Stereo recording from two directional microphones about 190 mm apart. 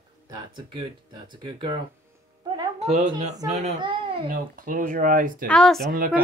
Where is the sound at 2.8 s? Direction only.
35° right (ahead or behind).